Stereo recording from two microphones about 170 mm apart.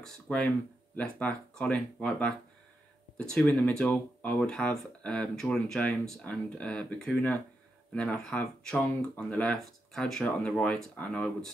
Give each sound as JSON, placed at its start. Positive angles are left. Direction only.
{"t": 0.0, "sound": "speech", "side_deg": 5}